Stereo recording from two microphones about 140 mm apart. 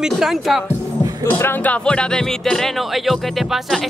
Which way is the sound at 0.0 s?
Centre (ahead or behind).